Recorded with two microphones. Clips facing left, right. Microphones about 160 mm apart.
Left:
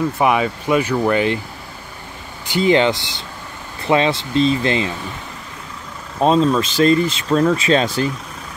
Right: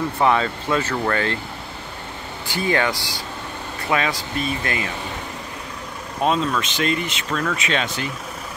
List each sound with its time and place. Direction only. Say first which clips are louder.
0.2 s speech: even; 15° left (ahead or behind)
2.4 s speech: left 7 dB; 20° left (ahead or behind)
6.2 s speech: left 6 dB; 30° left (ahead or behind)